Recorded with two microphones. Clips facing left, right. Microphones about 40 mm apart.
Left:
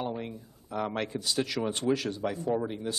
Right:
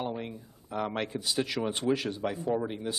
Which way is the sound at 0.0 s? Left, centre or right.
Centre.